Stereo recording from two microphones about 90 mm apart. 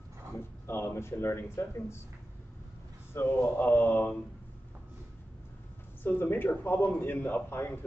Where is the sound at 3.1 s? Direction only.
20° left (ahead or behind).